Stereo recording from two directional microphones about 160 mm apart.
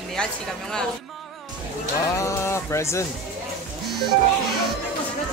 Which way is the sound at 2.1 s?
20° left (ahead or behind).